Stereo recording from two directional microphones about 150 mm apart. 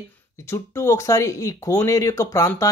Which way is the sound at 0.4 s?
20° left (ahead or behind).